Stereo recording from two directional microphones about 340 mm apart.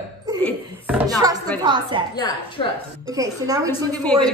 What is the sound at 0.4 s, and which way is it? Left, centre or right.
A woman's voice, centre.